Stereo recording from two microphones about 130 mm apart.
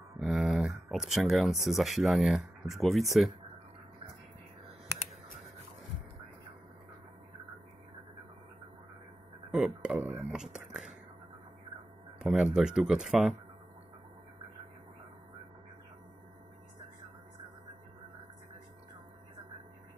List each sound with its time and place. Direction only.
0.2 s speech: 5° right (ahead or behind)
9.5 s speech: 5° right (ahead or behind)
12.2 s speech: 5° right (ahead or behind)